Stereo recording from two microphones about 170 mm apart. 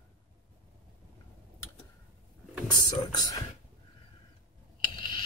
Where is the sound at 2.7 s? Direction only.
25° left (ahead or behind).